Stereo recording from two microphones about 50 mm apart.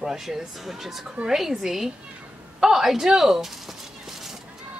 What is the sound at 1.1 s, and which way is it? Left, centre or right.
A woman's voice, centre.